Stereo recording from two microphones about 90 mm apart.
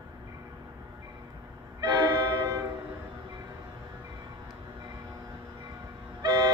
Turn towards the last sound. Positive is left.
turn(degrees=-40)  # may be behind; listen again after turning